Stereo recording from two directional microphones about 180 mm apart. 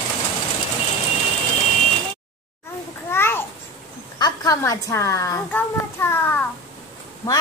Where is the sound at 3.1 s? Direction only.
15° left (ahead or behind).